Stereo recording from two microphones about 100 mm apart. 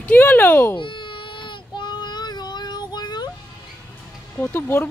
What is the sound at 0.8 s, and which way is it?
Child singing, 55° left (ahead or behind).